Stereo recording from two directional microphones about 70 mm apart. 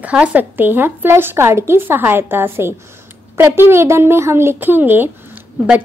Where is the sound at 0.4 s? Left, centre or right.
Right.